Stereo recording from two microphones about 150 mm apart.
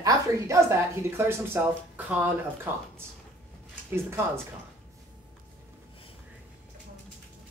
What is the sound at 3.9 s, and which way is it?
Speech, 15° right (ahead or behind).